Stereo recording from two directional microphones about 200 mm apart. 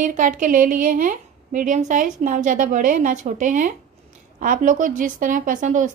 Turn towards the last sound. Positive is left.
turn(degrees=-40)  # may be behind; listen again after turning